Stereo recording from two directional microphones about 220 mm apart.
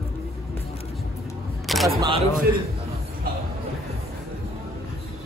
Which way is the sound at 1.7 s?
Centre (ahead or behind).